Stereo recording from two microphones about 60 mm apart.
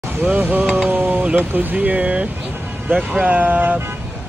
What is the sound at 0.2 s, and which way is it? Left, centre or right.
Speech, right.